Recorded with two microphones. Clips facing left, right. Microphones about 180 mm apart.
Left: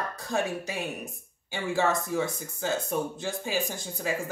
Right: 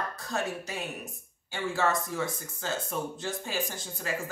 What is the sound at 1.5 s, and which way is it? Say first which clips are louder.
Speech: left 2 dB; 15° left (ahead or behind).